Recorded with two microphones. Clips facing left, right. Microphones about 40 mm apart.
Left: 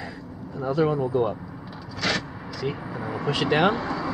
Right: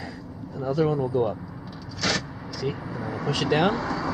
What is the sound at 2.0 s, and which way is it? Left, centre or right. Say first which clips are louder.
Vehicle: left 1 dB; centre.